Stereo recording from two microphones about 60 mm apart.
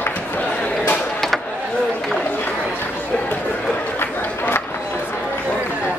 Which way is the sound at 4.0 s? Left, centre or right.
Left.